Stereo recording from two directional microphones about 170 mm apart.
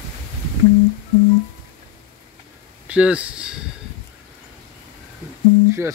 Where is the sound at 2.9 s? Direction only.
5° right (ahead or behind).